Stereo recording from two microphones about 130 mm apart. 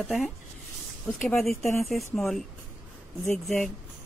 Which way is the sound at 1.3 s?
Centre (ahead or behind).